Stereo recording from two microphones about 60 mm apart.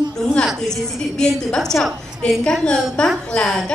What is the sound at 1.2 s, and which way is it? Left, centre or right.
A woman's voice, centre.